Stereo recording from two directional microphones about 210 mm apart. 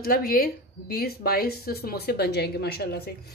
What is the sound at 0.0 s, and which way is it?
A woman's voice, 45° left (ahead or behind).